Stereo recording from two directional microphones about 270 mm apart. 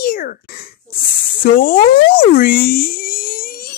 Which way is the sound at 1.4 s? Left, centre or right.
Left.